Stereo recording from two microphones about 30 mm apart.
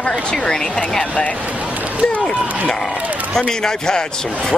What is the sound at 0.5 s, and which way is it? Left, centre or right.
Speech, left.